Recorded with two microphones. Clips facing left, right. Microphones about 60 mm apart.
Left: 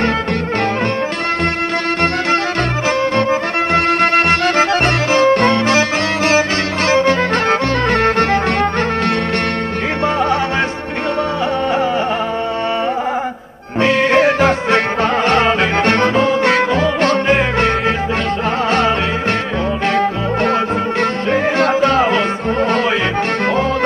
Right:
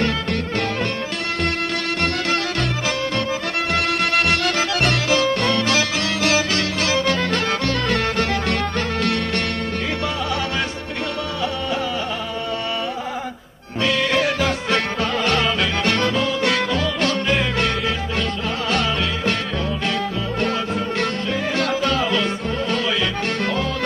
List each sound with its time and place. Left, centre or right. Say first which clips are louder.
3.2 s music: left 8 dB; left
13.7 s music: left 7 dB; left
21.0 s music: left 7 dB; left